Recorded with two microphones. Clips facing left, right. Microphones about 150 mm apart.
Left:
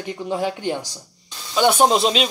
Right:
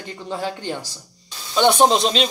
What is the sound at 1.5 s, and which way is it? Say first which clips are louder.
Speech: right 1 dB; 5° left (ahead or behind).